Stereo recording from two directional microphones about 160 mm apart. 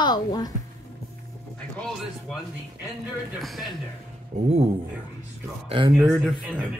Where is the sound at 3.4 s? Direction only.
Centre (ahead or behind).